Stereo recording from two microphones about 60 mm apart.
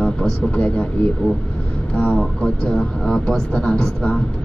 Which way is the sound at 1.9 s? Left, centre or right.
Centre.